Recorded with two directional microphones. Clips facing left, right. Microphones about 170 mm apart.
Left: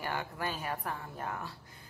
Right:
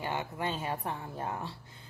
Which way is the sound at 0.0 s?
20° right (ahead or behind).